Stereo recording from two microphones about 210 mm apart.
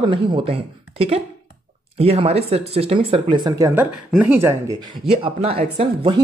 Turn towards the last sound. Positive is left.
turn(degrees=-25)  # may be behind; listen again after turning